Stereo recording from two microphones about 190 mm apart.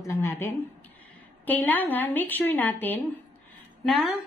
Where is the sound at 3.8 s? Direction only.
Centre (ahead or behind).